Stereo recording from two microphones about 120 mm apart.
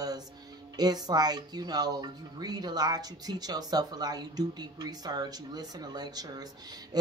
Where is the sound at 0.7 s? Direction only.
35° right (ahead or behind).